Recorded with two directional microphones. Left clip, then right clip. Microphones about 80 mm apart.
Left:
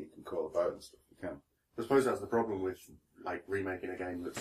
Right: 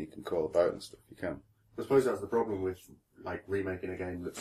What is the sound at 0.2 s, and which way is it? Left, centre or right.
Speech, right.